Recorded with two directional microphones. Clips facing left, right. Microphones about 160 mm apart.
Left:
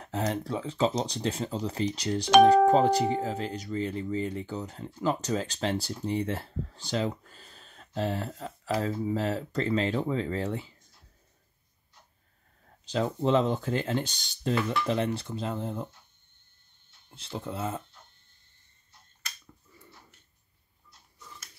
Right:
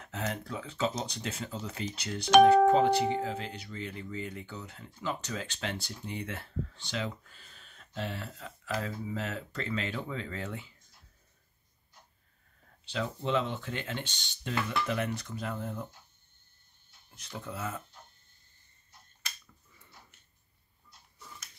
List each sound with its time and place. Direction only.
0.0 s speech: 35° left (ahead or behind)
12.8 s speech: 40° left (ahead or behind)
17.1 s speech: 30° left (ahead or behind)